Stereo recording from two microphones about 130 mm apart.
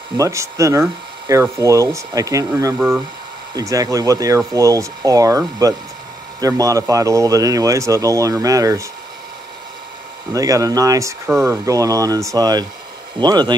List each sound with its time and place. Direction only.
0.2 s speech: 25° right (ahead or behind)
10.3 s speech: 25° right (ahead or behind)